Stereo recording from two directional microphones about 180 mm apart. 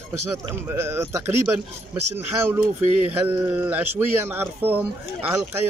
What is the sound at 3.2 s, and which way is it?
Speech, 10° right (ahead or behind).